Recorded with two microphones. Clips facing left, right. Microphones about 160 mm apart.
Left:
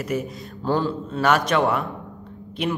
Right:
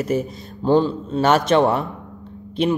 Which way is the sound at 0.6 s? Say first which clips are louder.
Right 6 dB; 20° right (ahead or behind).